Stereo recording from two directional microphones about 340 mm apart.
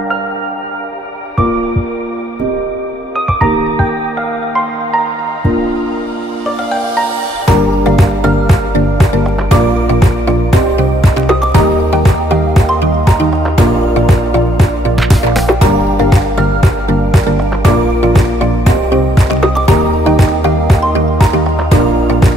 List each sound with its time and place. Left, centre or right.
14.6 s music: centre
19.1 s music: centre